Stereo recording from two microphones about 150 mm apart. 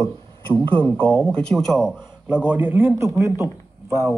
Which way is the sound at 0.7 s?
10° left (ahead or behind).